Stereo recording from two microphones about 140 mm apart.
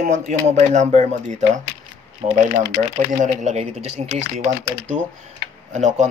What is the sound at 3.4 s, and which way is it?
Speech, 50° right (ahead or behind).